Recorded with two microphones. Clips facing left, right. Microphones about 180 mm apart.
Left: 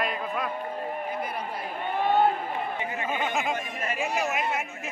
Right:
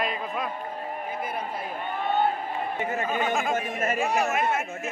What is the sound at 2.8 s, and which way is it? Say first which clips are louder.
Speech: right 3 dB; 45° right (ahead or behind).